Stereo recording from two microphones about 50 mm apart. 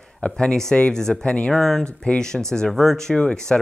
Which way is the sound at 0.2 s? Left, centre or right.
Centre.